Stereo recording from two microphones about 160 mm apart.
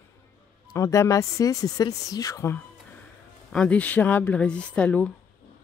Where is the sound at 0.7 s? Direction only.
20° left (ahead or behind).